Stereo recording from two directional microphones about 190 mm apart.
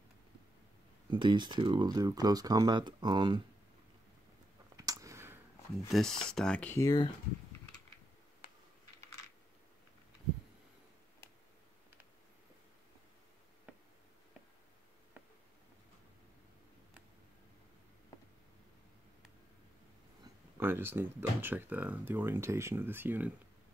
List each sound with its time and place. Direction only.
1.1 s speech: 25° right (ahead or behind)
4.7 s a sound: 15° right (ahead or behind)
5.9 s speech: centre (ahead or behind); by 7.1 s 20° left (ahead or behind)
20.5 s speech: 10° right (ahead or behind)